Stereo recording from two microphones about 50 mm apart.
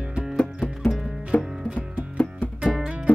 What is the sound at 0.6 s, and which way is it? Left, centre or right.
Music, left.